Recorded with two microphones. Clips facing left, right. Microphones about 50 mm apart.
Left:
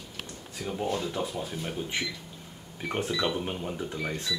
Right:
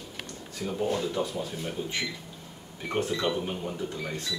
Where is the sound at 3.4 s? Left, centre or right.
Centre.